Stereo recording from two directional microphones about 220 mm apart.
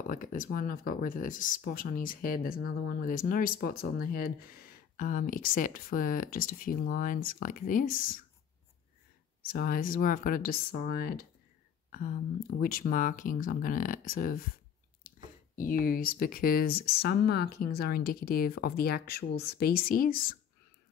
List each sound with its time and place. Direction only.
0.0 s speech: 40° left (ahead or behind)
9.4 s speech: 40° left (ahead or behind)